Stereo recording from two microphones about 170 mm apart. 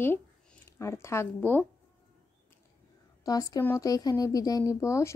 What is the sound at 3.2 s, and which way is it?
Speech, 20° left (ahead or behind).